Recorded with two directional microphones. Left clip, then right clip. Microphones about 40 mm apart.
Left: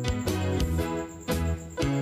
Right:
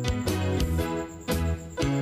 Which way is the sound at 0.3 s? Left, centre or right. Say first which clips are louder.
Even; centre.